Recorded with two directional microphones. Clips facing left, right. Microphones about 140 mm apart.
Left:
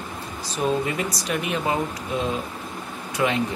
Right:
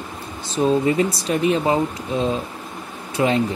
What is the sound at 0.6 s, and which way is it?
Speech, 30° right (ahead or behind).